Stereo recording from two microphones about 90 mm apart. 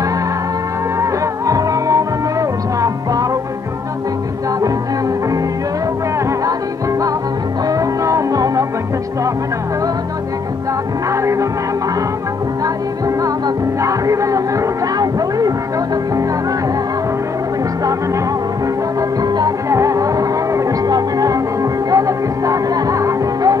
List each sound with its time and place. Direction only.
1.5 s music: 40° right (ahead or behind)
7.6 s music: 40° right (ahead or behind)
11.1 s music: 35° right (ahead or behind)
13.8 s music: 35° right (ahead or behind)
18.9 s music: 45° right (ahead or behind)
19.7 s music: 35° right (ahead or behind)